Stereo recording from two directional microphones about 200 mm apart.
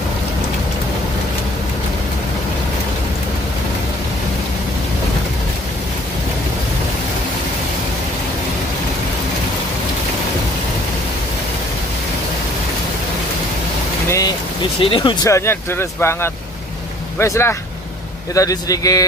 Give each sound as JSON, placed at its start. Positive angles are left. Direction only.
{"t": 14.0, "sound": "vehicle", "side_deg": 15}
{"t": 14.8, "sound": "speech", "side_deg": 25}